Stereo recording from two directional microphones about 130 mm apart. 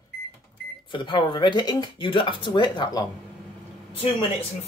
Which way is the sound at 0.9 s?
40° left (ahead or behind).